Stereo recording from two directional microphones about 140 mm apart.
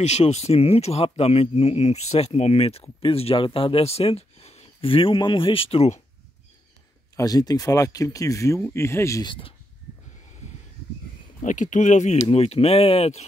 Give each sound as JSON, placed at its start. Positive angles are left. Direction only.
{"t": 0.0, "sound": "speech", "side_deg": 50}
{"t": 7.2, "sound": "speech", "side_deg": 25}
{"t": 9.2, "sound": "speech", "side_deg": 35}
{"t": 11.4, "sound": "speech", "side_deg": 65}